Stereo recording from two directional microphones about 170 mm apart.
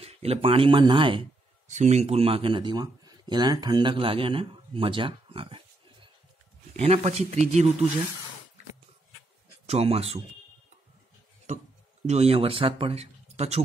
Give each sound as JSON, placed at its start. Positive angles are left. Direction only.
{"t": 0.0, "sound": "speech", "side_deg": -35}
{"t": 1.7, "sound": "speech", "side_deg": -40}
{"t": 9.7, "sound": "speech", "side_deg": -35}
{"t": 12.1, "sound": "speech", "side_deg": -35}